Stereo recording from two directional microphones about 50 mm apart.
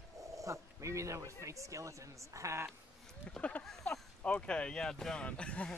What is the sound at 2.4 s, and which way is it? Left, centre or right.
Speech, right.